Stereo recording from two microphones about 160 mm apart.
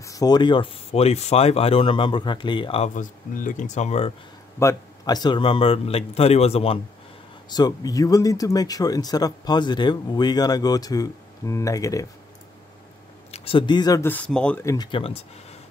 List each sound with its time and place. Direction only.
0.0 s speech: 20° left (ahead or behind)
2.9 s speech: 55° left (ahead or behind)
4.6 s speech: 20° left (ahead or behind); by 6.8 s 40° left (ahead or behind)
7.4 s speech: 25° left (ahead or behind)
13.3 s speech: 35° left (ahead or behind)
14.0 s speech: 10° left (ahead or behind)
14.6 s speech: 20° left (ahead or behind)
14.9 s speech: 35° left (ahead or behind)